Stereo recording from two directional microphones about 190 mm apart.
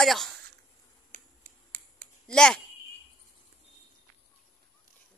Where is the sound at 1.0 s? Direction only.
45° right (ahead or behind).